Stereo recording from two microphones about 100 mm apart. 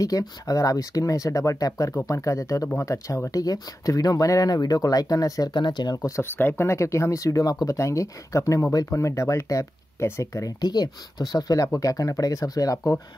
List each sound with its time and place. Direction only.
0.0 s speech: 35° left (ahead or behind)
5.5 s speech: 50° left (ahead or behind)
6.0 s speech: 25° left (ahead or behind)